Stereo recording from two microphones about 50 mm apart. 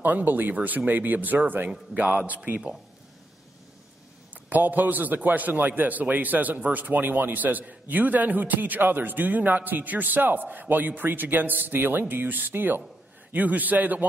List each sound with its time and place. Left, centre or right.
0.0 s a man's voice: right
2.0 s speech: right
4.5 s a man's voice: right